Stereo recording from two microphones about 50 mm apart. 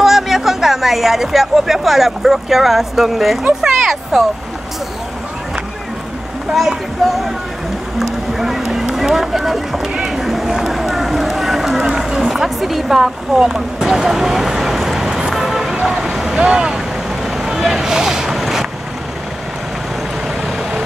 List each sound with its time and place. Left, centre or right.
0.0 s speech: centre
3.6 s a sound: centre
7.1 s speech: centre
8.0 s a sound: centre
15.8 s vehicle: centre
16.3 s speech: centre
17.4 s boat: centre